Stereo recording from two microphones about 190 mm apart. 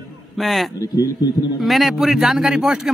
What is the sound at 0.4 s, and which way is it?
Speech, centre (ahead or behind).